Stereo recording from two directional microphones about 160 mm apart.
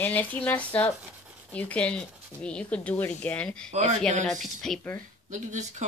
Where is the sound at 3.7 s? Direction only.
45° right (ahead or behind).